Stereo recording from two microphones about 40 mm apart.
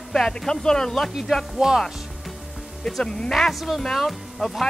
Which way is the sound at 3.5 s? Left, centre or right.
Centre.